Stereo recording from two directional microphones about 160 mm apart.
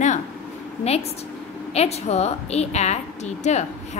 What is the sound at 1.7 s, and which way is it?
A woman's voice, 40° left (ahead or behind).